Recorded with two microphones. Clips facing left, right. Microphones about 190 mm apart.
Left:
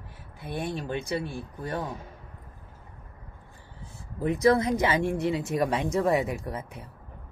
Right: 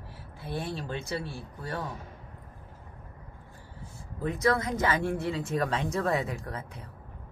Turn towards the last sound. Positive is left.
turn(degrees=15)  # may be behind; listen again after turning